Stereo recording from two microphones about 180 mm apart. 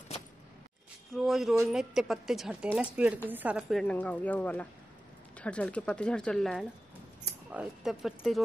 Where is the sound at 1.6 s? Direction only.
Centre (ahead or behind).